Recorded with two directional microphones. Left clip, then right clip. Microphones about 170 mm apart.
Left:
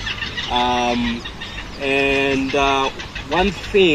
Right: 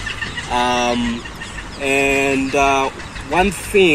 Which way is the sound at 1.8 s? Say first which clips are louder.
Right 2 dB; 10° right (ahead or behind).